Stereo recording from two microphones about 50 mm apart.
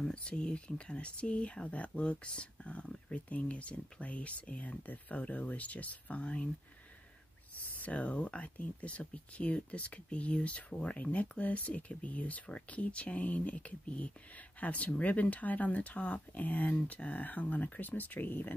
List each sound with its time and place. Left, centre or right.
0.0 s speech: left
7.5 s speech: left